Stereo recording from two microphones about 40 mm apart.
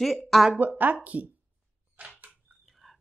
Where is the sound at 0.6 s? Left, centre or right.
Right.